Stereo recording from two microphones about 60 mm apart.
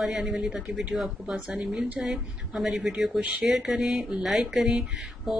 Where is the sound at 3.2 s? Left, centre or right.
Centre.